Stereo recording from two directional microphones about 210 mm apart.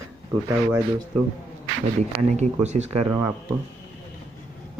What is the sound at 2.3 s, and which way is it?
Speech, 35° right (ahead or behind).